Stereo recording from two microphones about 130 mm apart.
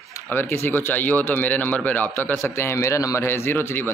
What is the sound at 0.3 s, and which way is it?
Speech, 15° left (ahead or behind).